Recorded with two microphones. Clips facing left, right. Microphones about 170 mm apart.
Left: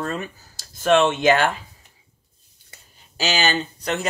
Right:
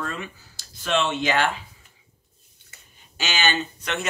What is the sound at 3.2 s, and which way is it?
Speech, 35° left (ahead or behind).